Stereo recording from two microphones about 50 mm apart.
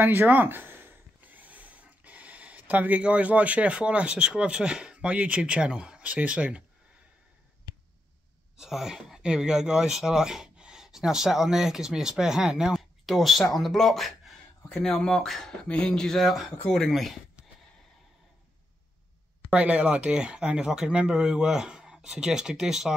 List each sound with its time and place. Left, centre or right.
0.0 s a sound: right
3.0 s speech: right
8.5 s speech: centre
13.0 s speech: centre
15.7 s speech: centre
19.5 s speech: right; by 22.9 s centre